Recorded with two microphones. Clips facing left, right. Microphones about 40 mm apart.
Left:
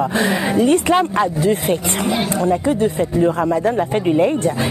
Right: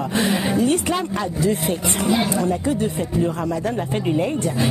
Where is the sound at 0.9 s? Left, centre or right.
Left.